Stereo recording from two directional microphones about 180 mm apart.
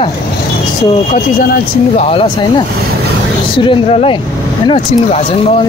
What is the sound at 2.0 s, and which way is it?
Speech, 30° left (ahead or behind).